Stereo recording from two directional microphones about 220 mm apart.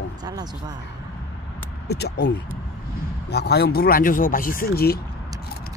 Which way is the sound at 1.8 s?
50° left (ahead or behind).